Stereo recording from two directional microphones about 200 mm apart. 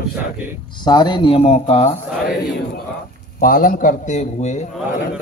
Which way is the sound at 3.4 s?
45° left (ahead or behind).